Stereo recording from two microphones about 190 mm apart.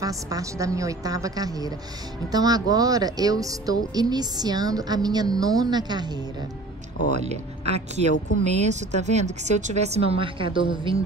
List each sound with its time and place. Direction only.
0.3 s a woman's voice: 15° right (ahead or behind)
7.2 s speech: 35° right (ahead or behind)